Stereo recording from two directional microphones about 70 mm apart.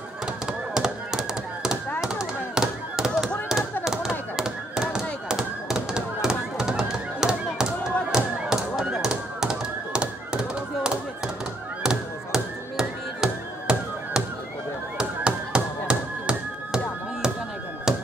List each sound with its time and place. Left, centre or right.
0.5 s tap: centre
2.0 s a sound: centre
8.1 s tap: centre
11.8 s music: centre
15.0 s tap: centre